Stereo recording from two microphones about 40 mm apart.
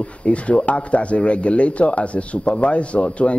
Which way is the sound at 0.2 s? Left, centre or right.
Left.